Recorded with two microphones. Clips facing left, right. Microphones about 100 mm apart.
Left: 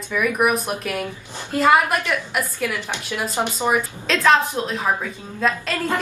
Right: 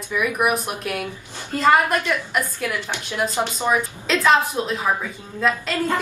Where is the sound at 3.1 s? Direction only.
15° left (ahead or behind).